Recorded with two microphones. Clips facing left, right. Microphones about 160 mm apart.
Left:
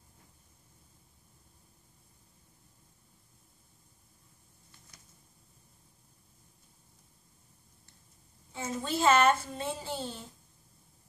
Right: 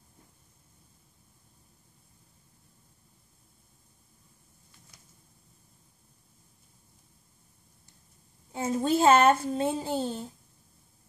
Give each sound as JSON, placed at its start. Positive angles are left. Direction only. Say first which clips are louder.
{"t": 8.5, "sound": "a woman's voice", "louder": "right 8 dB", "side_deg": -50}